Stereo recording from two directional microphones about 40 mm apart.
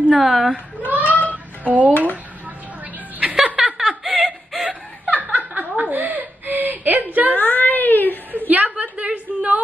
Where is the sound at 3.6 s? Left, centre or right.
Centre.